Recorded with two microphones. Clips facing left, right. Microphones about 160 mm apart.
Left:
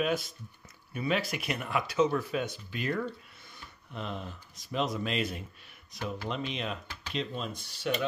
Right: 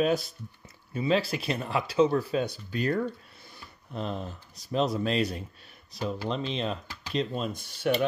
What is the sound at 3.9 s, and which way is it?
Speech, 35° right (ahead or behind).